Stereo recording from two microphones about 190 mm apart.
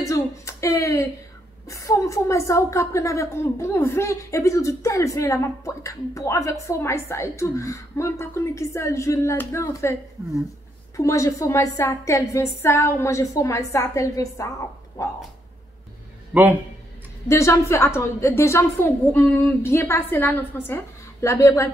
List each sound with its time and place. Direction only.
0.0 s a sound: 15° left (ahead or behind)
1.7 s a woman's voice: 15° left (ahead or behind)
11.0 s a woman's voice: 15° left (ahead or behind)
17.3 s a woman's voice: 15° left (ahead or behind)